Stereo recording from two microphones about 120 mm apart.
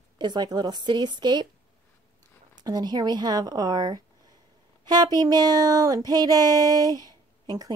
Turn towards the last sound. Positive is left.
turn(degrees=-30)  # may be behind; listen again after turning